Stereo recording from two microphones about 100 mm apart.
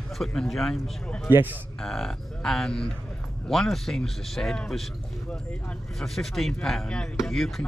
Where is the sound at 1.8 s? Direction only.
5° left (ahead or behind).